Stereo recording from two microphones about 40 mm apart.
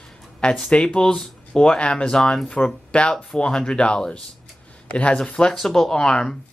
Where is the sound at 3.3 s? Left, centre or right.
Left.